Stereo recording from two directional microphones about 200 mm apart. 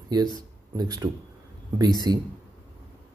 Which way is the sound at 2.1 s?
20° right (ahead or behind).